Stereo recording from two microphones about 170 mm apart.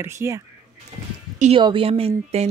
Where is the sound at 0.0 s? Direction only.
15° right (ahead or behind).